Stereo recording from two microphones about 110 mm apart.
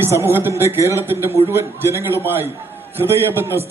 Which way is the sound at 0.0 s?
20° right (ahead or behind).